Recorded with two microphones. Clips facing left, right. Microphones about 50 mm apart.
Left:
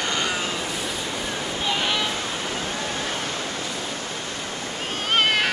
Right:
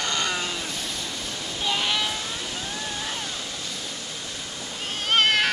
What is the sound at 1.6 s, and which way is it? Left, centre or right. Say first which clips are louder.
Waves: left 1 dB; centre.